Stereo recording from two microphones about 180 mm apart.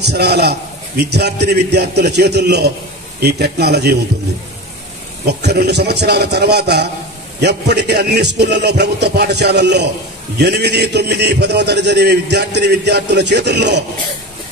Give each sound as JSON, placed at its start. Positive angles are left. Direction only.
{"t": 0.0, "sound": "a man's voice", "side_deg": -65}
{"t": 5.2, "sound": "a man's voice", "side_deg": -65}